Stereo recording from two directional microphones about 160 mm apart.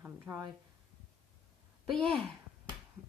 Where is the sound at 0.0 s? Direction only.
15° right (ahead or behind).